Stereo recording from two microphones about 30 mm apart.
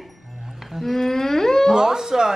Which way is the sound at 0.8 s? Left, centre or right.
Centre.